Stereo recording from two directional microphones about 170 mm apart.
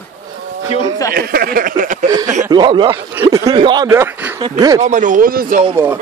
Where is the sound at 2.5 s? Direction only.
25° right (ahead or behind).